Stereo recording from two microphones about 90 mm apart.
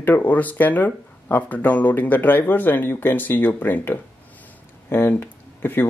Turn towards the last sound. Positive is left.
turn(degrees=25)  # may be behind; listen again after turning